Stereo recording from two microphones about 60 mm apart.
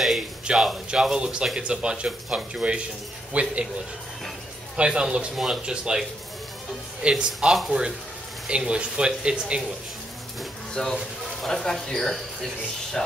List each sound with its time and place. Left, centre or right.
0.5 s speech: centre
4.7 s speech: centre
7.3 s speech: centre
8.5 s speech: centre
10.7 s speech: centre